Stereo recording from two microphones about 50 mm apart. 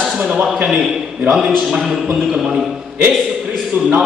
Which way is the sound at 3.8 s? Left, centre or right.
Right.